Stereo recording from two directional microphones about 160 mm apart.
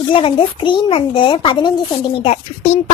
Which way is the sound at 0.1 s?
30° left (ahead or behind).